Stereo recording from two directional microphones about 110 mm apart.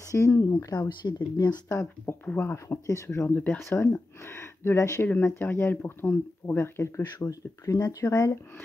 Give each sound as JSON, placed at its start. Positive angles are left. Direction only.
{"t": 0.0, "sound": "speech", "side_deg": 30}
{"t": 2.2, "sound": "speech", "side_deg": 15}